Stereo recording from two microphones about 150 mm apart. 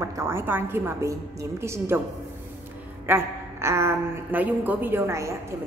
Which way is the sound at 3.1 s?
15° right (ahead or behind).